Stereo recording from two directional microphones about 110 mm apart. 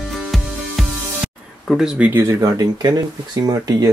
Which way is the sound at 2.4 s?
40° right (ahead or behind).